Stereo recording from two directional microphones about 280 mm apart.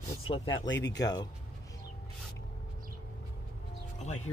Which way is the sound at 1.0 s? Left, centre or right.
Centre.